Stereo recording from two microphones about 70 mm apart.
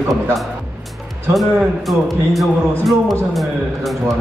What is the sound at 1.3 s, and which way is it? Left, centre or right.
A man's voice, centre.